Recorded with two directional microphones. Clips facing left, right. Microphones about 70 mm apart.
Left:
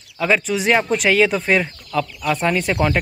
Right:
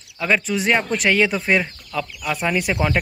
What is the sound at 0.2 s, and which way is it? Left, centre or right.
Speech, centre.